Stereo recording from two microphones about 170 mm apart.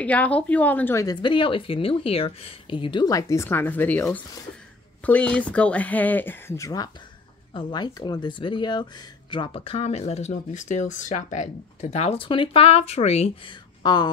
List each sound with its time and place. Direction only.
0.0 s speech: 10° left (ahead or behind); by 13.6 s 40° left (ahead or behind)
13.8 s speech: 25° left (ahead or behind)